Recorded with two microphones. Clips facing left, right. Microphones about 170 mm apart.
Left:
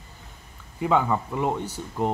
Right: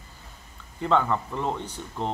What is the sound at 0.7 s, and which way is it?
Speech, 10° left (ahead or behind).